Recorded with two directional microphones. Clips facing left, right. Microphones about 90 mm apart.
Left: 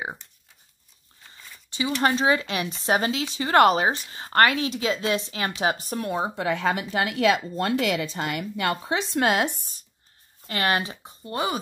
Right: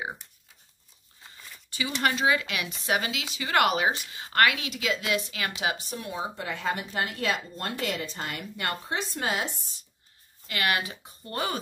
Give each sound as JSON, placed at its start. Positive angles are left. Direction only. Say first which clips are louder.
{"t": 2.0, "sound": "a woman's voice", "louder": "left 3 dB", "side_deg": 30}
{"t": 10.4, "sound": "speech", "louder": "left 3 dB", "side_deg": 35}